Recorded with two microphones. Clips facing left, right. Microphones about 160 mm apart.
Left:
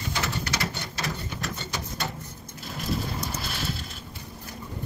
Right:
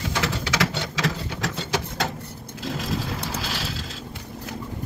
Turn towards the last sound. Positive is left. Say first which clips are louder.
# right 3 dB
turn(degrees=-90)